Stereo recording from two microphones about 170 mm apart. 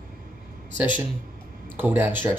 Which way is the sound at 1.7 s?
10° right (ahead or behind).